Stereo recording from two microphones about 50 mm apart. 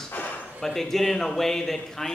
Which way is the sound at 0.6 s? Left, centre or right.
Centre.